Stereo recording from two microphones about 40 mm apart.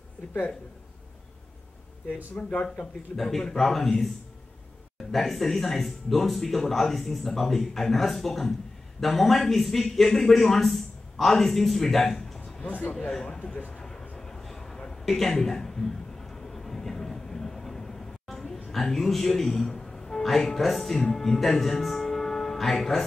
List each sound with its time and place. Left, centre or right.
2.3 s speech: left
3.2 s a man's voice: centre
5.1 s speech: centre
12.6 s speech: left
12.9 s a man's voice: centre
13.7 s a sound: centre
18.3 s music: centre
21.0 s speech: centre